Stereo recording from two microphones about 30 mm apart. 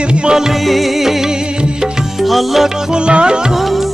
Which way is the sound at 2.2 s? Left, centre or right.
Centre.